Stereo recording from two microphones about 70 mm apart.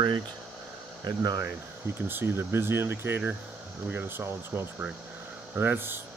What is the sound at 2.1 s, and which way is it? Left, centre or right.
Speech, right.